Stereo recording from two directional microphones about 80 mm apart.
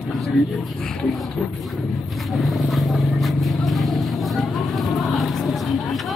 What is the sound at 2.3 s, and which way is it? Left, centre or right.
Vehicle, centre.